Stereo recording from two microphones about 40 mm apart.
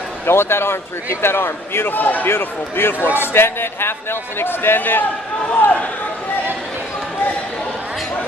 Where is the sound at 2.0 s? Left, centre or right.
Left.